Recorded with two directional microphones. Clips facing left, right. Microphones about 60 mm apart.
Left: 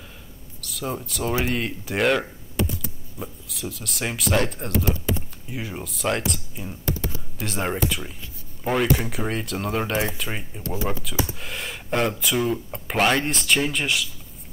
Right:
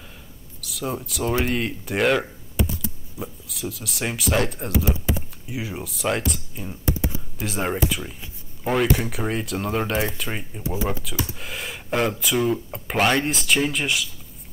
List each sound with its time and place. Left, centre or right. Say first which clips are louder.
0.6 s speech: right 1 dB; centre
6.8 s computer keyboard: right 3 dB; centre
7.3 s speech: even; centre
10.6 s speech: right 2 dB; centre
11.2 s speech: even; centre